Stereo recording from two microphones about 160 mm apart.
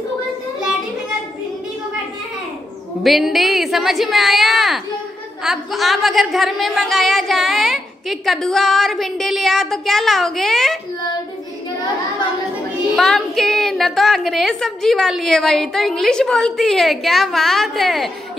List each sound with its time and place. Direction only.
3.0 s a woman's voice: centre (ahead or behind)
12.9 s a woman's voice: centre (ahead or behind)